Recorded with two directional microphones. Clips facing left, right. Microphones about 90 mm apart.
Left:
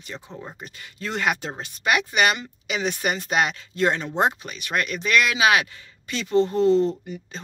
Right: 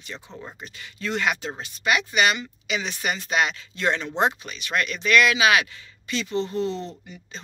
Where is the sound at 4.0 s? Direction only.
10° left (ahead or behind).